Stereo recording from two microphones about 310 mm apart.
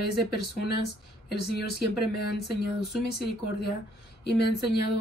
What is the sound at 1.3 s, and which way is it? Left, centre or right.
A woman's voice, left.